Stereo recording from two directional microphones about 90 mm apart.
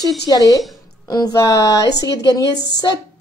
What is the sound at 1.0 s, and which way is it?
A woman's voice, 45° left (ahead or behind).